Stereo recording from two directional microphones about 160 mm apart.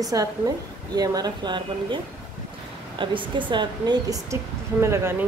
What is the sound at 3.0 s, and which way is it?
A woman's voice, 30° right (ahead or behind).